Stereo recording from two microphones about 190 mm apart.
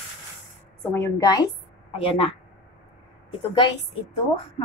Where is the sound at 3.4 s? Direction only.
25° left (ahead or behind).